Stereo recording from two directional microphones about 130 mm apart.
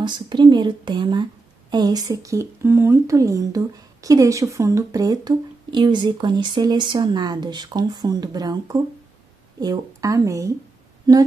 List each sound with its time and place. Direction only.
0.0 s a woman's voice: 35° right (ahead or behind)